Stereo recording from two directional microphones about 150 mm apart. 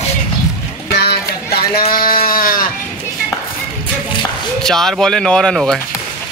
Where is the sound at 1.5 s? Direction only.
80° left.